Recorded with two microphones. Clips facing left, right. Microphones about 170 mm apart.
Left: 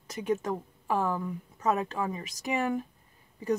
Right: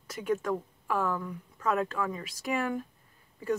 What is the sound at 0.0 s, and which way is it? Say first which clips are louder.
Speech: left 1 dB; 20° left (ahead or behind).